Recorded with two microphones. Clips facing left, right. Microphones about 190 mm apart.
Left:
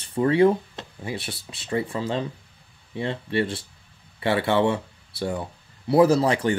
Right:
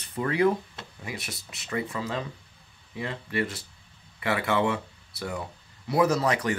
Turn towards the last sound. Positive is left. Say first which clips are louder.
# left 5 dB
turn(degrees=30)  # may be behind; listen again after turning